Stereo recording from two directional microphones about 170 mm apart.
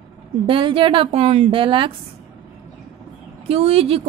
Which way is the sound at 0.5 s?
30° right (ahead or behind).